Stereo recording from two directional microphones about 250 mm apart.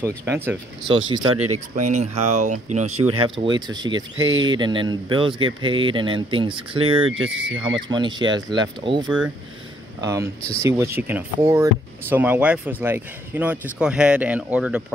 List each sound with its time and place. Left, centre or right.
0.0 s speech: centre
1.3 s speech: right
1.8 s speech: right
3.3 s speech: centre